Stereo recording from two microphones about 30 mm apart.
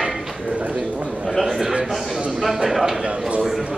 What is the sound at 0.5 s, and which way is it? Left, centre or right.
Speech, right.